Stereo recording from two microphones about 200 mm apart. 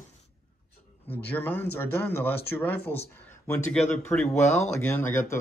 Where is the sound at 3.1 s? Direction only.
10° left (ahead or behind).